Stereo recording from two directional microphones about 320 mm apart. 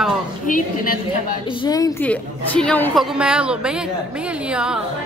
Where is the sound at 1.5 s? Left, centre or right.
Centre.